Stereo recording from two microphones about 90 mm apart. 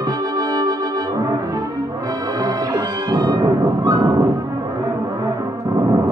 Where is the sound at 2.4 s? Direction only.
45° right (ahead or behind).